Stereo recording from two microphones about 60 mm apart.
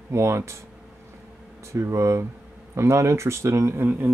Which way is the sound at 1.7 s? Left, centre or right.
Right.